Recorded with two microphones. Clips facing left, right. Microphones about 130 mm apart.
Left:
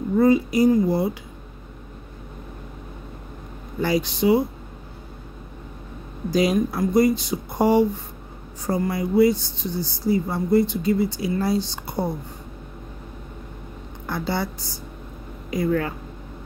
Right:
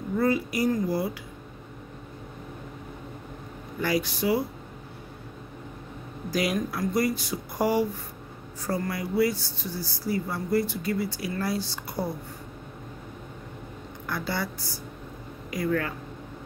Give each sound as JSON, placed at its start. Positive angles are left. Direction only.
{"t": 0.2, "sound": "speech", "side_deg": 20}
{"t": 3.8, "sound": "speech", "side_deg": 25}
{"t": 6.3, "sound": "speech", "side_deg": 25}
{"t": 14.0, "sound": "speech", "side_deg": 25}